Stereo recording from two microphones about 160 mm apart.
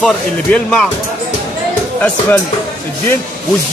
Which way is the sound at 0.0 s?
5° left (ahead or behind).